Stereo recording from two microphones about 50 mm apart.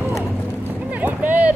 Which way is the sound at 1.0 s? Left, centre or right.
Right.